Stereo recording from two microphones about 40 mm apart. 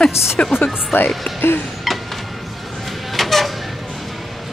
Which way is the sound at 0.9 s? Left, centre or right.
Left.